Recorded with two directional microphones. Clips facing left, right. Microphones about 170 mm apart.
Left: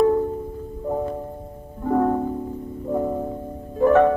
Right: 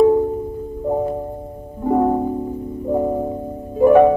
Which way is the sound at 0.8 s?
25° right (ahead or behind).